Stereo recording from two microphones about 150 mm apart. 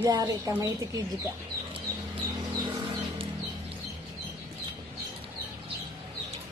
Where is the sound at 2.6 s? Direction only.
30° right (ahead or behind).